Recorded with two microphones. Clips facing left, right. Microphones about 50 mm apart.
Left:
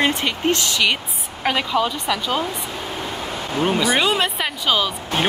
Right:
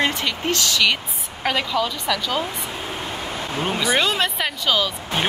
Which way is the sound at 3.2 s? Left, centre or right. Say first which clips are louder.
Left 5 dB; centre.